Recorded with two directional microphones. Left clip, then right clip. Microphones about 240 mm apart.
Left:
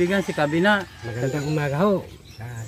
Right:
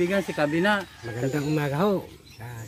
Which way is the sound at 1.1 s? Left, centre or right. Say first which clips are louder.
Even; centre.